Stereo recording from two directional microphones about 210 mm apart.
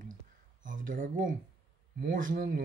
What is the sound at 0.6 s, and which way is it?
Speech, 40° right (ahead or behind).